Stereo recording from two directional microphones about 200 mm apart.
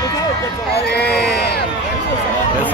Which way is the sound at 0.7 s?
55° left (ahead or behind).